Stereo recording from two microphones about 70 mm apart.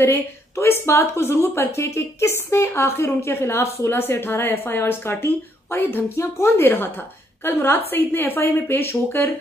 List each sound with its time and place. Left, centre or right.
0.0 s a woman's voice: left